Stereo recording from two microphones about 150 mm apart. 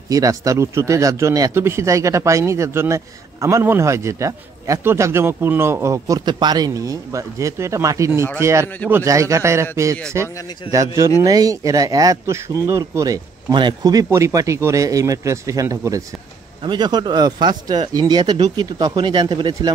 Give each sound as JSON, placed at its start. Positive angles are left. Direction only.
{"t": 0.1, "sound": "a man's voice", "side_deg": -20}